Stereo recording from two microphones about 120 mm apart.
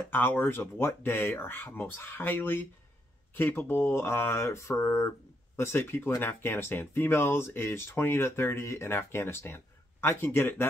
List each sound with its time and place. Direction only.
0.1 s speech: 15° left (ahead or behind)